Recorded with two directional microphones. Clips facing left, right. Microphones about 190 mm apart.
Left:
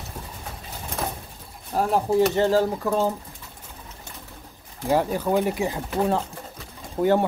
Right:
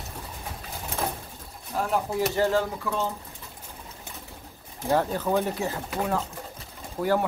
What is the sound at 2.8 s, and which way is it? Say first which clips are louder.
Speech: left 6 dB; 40° left (ahead or behind).